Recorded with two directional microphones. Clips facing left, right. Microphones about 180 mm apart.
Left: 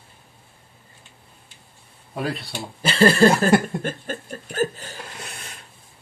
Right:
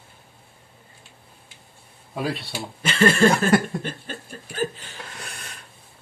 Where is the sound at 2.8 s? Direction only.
35° left (ahead or behind).